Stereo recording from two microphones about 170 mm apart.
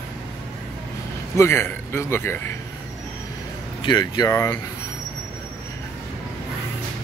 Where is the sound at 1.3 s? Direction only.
15° left (ahead or behind).